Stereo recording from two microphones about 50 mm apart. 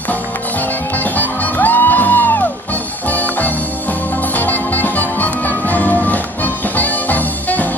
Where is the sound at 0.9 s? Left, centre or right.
Left.